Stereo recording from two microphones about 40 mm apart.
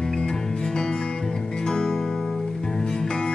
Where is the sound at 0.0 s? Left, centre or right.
Centre.